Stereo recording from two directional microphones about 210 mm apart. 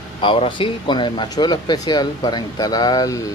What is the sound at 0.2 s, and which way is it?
Speech, 25° left (ahead or behind).